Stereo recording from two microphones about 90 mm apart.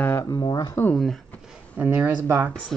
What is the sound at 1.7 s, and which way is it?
Speech, 20° right (ahead or behind).